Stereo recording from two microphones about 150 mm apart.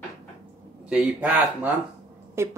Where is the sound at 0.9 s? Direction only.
5° right (ahead or behind).